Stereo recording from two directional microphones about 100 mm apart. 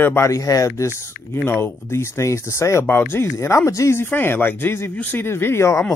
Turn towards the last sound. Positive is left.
turn(degrees=25)  # may be behind; listen again after turning